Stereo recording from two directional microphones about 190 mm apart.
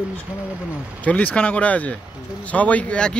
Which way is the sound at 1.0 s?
10° left (ahead or behind).